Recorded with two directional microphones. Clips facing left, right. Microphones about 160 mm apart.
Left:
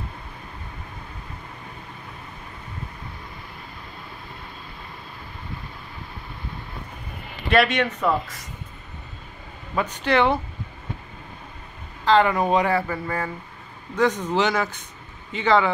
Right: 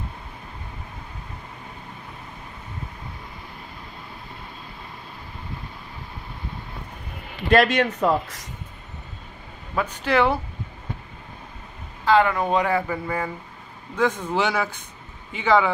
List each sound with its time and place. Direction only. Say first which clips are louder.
7.4 s speech: right 2 dB; 40° right (ahead or behind)
9.8 s speech: even; 5° right (ahead or behind)
12.0 s a sound: even; 5° right (ahead or behind)
12.3 s speech: left 1 dB; 10° left (ahead or behind)
12.8 s speech: right 1 dB; 10° right (ahead or behind)